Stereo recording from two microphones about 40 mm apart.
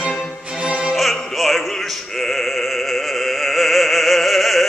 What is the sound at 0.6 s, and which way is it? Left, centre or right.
Music, right.